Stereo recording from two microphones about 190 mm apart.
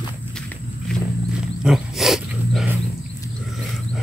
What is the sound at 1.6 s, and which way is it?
Wild animals, centre (ahead or behind).